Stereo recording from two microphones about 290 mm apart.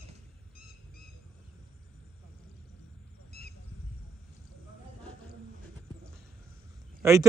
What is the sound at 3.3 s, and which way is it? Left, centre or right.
Squawk, left.